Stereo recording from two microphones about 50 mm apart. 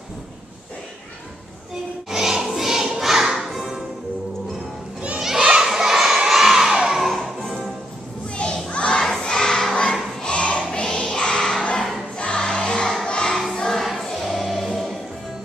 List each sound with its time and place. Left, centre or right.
2.0 s music: centre
5.4 s children shouting: centre
7.1 s music: centre
8.6 s crowd: centre
9.2 s choir: centre
10.2 s a sound: left
12.2 s music: centre